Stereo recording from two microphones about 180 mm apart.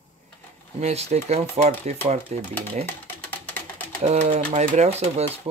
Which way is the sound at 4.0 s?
40° right (ahead or behind).